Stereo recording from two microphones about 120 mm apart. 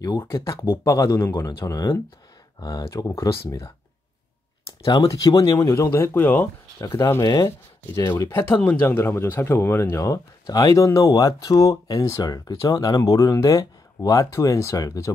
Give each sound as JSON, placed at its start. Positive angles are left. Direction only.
{"t": 0.2, "sound": "speech", "side_deg": 25}
{"t": 5.6, "sound": "speech", "side_deg": 25}
{"t": 6.8, "sound": "speech", "side_deg": 25}